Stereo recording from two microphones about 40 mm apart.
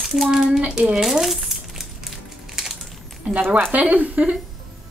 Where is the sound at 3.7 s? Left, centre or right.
Right.